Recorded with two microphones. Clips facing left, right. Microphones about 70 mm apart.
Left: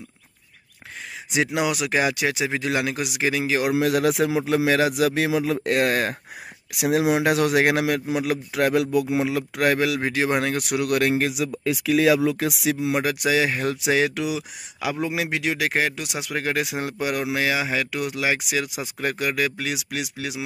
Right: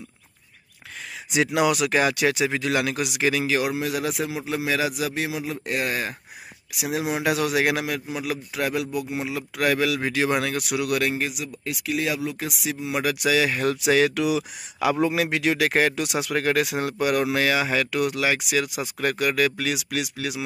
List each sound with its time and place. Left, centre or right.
1.3 s speech: centre
3.7 s speech: left
4.6 s a man's voice: left
4.9 s speech: left
7.2 s a man's voice: left
7.8 s speech: left
8.2 s a man's voice: left
9.6 s speech: left
12.4 s speech: left
13.0 s speech: left